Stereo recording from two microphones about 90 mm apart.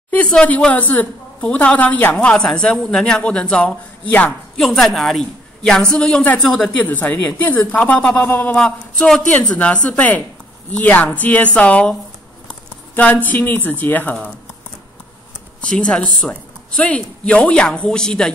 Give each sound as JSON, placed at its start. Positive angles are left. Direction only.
{"t": 0.1, "sound": "a woman's voice", "side_deg": 15}
{"t": 6.8, "sound": "speech", "side_deg": 20}
{"t": 8.3, "sound": "speech", "side_deg": 25}
{"t": 8.5, "sound": "speech", "side_deg": 10}
{"t": 15.6, "sound": "speech", "side_deg": 10}